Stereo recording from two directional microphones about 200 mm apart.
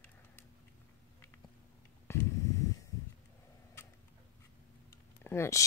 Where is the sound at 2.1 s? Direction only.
15° left (ahead or behind).